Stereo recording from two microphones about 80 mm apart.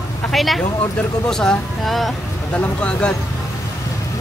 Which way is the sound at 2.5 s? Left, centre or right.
Centre.